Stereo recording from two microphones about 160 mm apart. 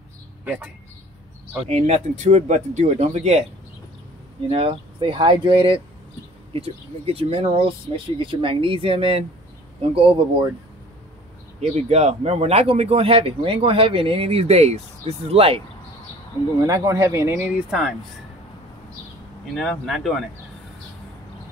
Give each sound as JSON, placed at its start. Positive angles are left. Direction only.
{"t": 1.7, "sound": "speech", "side_deg": -45}
{"t": 4.5, "sound": "speech", "side_deg": -35}
{"t": 11.9, "sound": "speech", "side_deg": -40}
{"t": 16.6, "sound": "speech", "side_deg": -20}
{"t": 19.5, "sound": "speech", "side_deg": 5}